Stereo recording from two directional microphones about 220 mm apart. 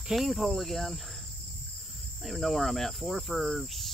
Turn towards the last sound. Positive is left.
turn(degrees=0)  # may be behind; listen again after turning